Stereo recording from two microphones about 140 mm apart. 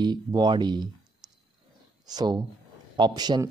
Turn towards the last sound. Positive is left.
turn(degrees=-30)  # may be behind; listen again after turning